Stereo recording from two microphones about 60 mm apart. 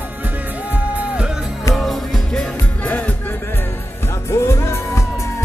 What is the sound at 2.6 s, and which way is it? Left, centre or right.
Music, left.